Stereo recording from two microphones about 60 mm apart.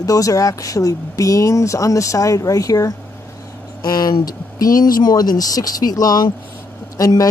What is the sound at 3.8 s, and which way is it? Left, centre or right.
Speech, left.